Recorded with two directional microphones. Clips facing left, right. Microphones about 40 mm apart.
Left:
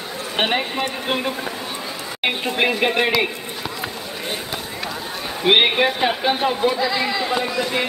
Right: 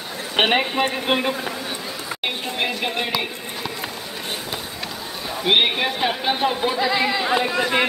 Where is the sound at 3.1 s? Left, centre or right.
Centre.